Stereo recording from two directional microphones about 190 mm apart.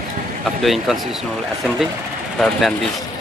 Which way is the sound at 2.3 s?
Centre (ahead or behind).